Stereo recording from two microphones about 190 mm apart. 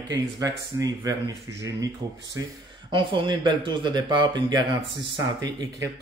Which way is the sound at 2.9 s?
25° right (ahead or behind).